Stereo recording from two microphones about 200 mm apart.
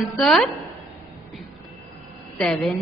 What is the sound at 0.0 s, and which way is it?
Speech, centre (ahead or behind).